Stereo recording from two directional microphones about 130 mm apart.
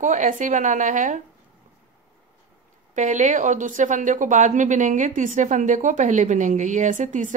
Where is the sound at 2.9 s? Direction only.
70° right (ahead or behind).